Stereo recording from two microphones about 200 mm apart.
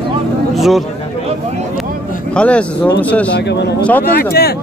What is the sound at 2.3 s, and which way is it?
Speech, 5° left (ahead or behind).